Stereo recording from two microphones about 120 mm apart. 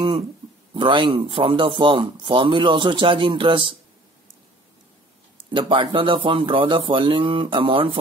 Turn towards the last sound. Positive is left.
turn(degrees=-45)  # may be behind; listen again after turning